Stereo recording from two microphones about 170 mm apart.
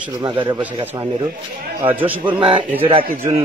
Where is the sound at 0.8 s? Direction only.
10° right (ahead or behind).